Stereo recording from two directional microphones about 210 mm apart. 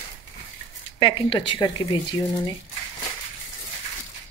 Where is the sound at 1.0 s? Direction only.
25° left (ahead or behind).